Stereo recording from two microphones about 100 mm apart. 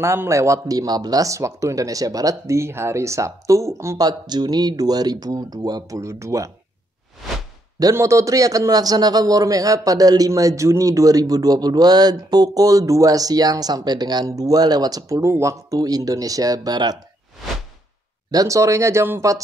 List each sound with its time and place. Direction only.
0.0 s a man's voice: 25° right (ahead or behind)
4.1 s a man's voice: 45° right (ahead or behind)
7.9 s a man's voice: 30° right (ahead or behind)
18.3 s a man's voice: 35° right (ahead or behind)